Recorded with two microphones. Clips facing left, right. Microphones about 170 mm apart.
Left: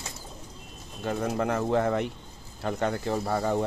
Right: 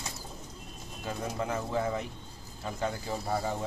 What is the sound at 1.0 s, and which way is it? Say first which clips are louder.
Speech: left 6 dB; 60° left (ahead or behind).